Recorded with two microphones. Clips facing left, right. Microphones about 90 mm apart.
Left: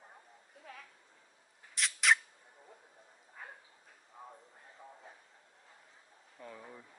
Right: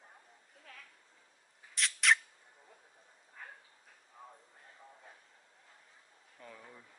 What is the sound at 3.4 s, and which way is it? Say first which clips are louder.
Dog: left 1 dB; 10° left (ahead or behind).